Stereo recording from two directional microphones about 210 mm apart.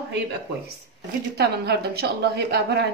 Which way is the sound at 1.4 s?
50° right (ahead or behind).